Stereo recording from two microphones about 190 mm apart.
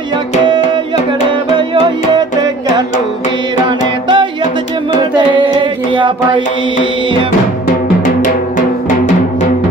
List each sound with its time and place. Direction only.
3.6 s music: 25° right (ahead or behind)
8.2 s music: 45° left (ahead or behind)